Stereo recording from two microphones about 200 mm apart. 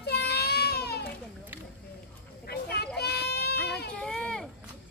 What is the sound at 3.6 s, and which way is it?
Baby cry, 55° left (ahead or behind).